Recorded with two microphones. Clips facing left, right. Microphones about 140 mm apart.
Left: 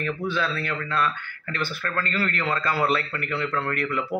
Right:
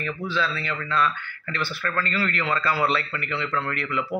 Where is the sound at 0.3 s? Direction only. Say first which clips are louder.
Even; 50° left (ahead or behind).